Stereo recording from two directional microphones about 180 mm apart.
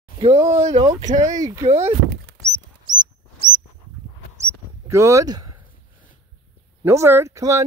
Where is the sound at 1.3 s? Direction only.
20° right (ahead or behind).